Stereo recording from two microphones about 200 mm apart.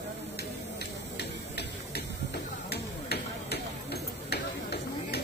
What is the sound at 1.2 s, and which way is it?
Tick-tock, 55° left (ahead or behind).